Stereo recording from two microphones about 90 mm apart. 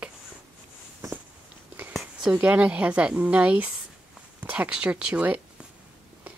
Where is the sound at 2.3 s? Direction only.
15° right (ahead or behind).